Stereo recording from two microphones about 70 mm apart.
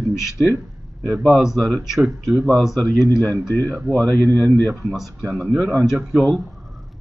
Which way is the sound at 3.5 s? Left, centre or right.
Left.